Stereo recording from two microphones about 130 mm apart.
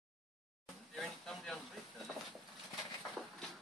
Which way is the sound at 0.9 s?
5° left (ahead or behind).